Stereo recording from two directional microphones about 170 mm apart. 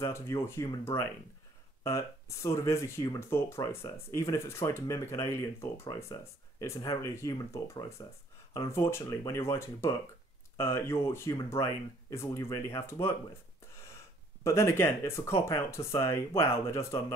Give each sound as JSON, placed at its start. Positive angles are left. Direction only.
{"t": 0.0, "sound": "speech", "side_deg": 15}
{"t": 14.4, "sound": "speech", "side_deg": 15}